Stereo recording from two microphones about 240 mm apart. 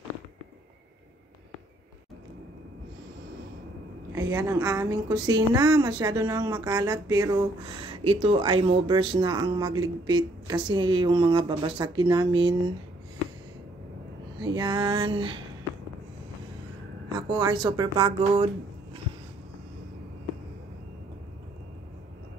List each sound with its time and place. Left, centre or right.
4.1 s a woman's voice: centre
14.4 s a woman's voice: centre
17.3 s a woman's voice: centre